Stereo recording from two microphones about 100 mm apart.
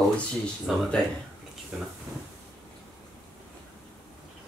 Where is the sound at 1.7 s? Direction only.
5° right (ahead or behind).